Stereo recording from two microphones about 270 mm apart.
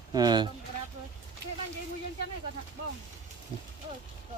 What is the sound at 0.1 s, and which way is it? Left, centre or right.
Speech, centre.